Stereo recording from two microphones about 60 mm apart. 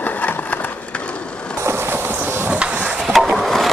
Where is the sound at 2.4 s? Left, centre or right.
Centre.